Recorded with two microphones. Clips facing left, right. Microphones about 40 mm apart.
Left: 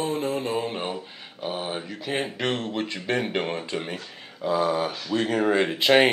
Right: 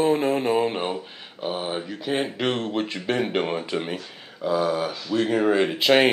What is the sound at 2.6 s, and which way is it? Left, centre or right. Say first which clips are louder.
Speech: right 3 dB; centre.